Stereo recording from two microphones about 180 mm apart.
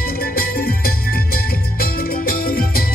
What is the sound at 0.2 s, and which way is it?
Music, 55° left (ahead or behind).